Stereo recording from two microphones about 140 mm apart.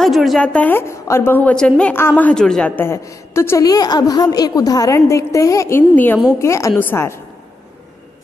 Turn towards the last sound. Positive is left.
turn(degrees=20)  # may be behind; listen again after turning